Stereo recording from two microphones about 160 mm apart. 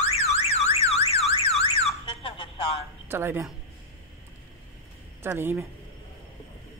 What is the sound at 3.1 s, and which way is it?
Speech, 15° right (ahead or behind).